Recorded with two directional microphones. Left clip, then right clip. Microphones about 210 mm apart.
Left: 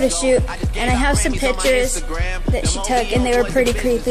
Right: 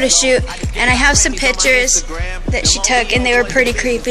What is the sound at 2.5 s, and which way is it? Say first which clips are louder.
Music: right 6 dB; 15° left (ahead or behind).